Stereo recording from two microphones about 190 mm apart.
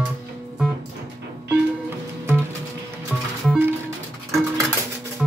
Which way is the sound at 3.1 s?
10° right (ahead or behind).